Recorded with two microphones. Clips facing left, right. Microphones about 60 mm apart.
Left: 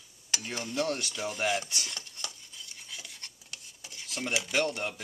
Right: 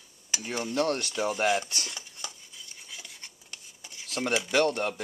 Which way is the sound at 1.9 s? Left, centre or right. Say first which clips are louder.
Even; centre.